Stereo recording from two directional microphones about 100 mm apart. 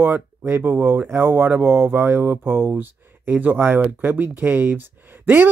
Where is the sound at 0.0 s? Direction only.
20° right (ahead or behind).